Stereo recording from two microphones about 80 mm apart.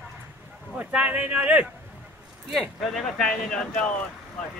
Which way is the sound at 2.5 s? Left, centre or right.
Centre.